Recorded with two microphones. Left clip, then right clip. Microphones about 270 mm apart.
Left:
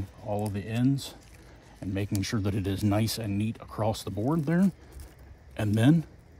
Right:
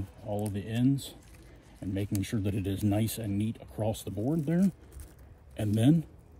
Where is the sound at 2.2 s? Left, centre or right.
Left.